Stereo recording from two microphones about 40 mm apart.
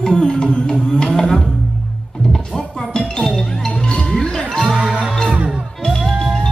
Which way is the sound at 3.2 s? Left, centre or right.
Centre.